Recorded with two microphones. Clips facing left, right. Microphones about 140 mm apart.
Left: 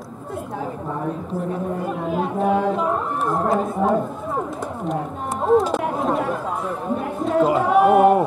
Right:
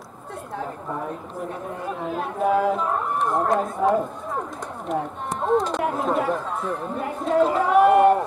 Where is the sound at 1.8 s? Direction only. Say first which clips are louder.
Left 1 dB; centre (ahead or behind).